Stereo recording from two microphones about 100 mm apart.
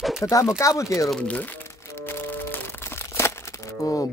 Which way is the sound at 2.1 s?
20° left (ahead or behind).